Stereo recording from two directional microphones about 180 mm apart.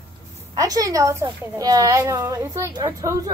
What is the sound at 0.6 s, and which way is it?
A woman's voice, 20° right (ahead or behind).